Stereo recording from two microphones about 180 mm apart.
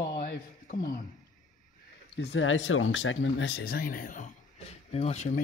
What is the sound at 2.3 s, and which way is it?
Speech, 90° left.